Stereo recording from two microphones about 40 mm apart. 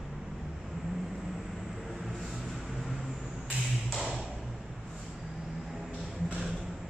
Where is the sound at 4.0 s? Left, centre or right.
Centre.